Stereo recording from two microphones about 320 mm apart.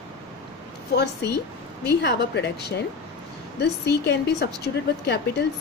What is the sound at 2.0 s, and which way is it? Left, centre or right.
Speech, left.